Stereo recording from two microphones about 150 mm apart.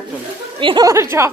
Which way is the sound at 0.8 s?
20° right (ahead or behind).